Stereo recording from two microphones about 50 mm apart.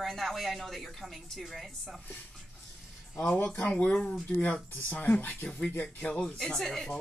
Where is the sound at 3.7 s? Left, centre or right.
Left.